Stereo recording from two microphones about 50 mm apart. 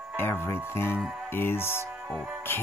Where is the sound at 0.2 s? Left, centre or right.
Left.